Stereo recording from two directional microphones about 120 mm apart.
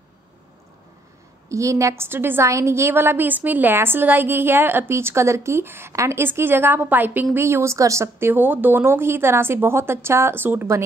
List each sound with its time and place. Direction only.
1.5 s a woman's voice: 25° right (ahead or behind)